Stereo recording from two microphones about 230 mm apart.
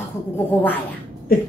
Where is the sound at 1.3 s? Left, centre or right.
Left.